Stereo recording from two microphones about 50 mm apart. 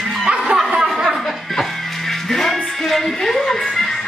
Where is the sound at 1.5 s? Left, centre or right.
Centre.